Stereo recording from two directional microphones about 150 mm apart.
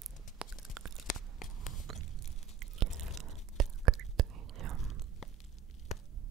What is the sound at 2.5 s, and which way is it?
Crunch, centre (ahead or behind).